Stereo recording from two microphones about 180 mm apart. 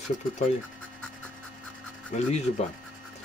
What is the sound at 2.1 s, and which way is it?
Speech, 40° left (ahead or behind).